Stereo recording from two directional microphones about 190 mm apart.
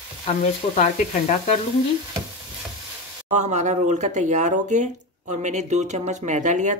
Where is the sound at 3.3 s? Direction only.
35° right (ahead or behind).